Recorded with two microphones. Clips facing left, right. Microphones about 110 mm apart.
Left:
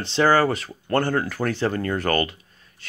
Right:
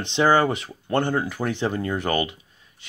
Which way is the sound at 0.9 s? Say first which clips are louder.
Left 1 dB; 20° right (ahead or behind).